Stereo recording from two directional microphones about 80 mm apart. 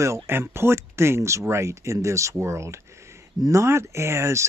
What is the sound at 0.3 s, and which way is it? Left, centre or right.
Speech, right.